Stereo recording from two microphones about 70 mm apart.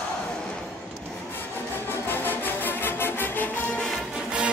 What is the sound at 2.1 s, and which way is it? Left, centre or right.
Music, left.